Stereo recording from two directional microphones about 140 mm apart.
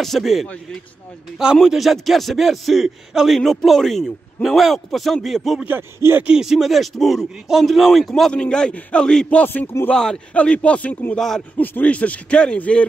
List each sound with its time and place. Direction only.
0.0 s speech: centre (ahead or behind)
5.7 s speech: 15° right (ahead or behind); by 12.8 s 10° left (ahead or behind)